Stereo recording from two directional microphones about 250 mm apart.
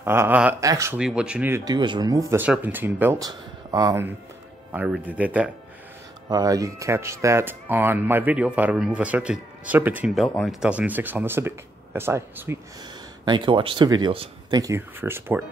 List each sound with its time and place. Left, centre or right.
0.0 s speech: centre